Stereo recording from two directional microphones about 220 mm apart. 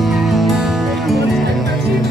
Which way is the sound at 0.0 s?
Centre (ahead or behind).